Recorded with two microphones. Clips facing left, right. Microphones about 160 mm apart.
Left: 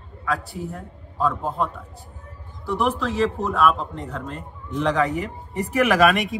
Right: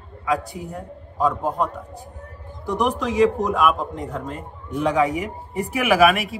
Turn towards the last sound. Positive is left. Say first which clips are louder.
# right 1 dB
turn(degrees=-5)  # may be behind; listen again after turning